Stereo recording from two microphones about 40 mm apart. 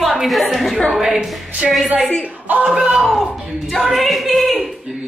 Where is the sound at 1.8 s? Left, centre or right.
Right.